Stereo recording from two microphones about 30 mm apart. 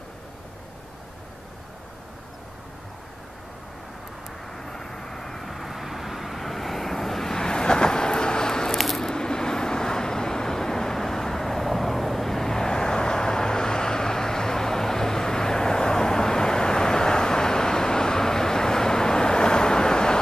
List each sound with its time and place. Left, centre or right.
4.6 s vehicle: centre
7.3 s vehicle: left
8.7 s squish: centre
9.0 s vehicle: left